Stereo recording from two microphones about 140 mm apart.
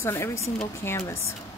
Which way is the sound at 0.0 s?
20° left (ahead or behind).